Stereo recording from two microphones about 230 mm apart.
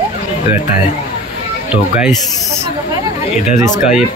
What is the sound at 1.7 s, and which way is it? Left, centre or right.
Speech, centre.